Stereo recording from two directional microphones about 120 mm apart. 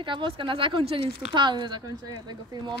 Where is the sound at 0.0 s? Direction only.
45° right (ahead or behind).